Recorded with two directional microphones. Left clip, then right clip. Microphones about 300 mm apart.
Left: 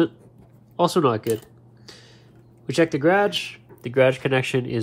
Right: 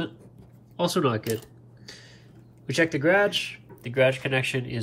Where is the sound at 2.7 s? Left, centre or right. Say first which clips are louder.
Left 3 dB; centre.